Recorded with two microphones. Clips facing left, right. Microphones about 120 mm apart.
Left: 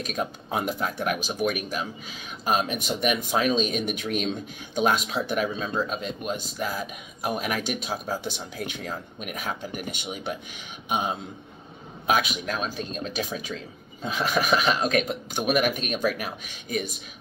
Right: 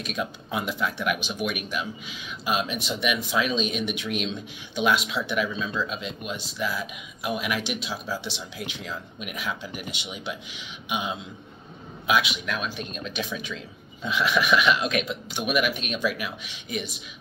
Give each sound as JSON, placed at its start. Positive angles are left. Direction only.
{"t": 0.0, "sound": "speech", "side_deg": 40}